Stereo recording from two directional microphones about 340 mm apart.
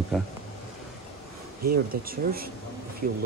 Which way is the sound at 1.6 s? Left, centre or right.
Right.